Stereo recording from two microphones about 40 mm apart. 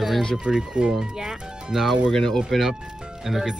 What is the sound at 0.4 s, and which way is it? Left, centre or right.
Speech, right.